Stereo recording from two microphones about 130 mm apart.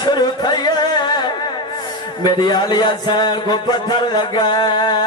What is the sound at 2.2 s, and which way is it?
Speech, 30° left (ahead or behind).